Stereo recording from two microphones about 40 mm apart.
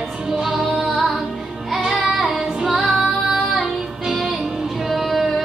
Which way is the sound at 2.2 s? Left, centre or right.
Centre.